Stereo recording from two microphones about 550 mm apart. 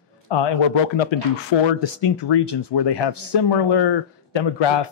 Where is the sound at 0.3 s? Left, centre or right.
Left.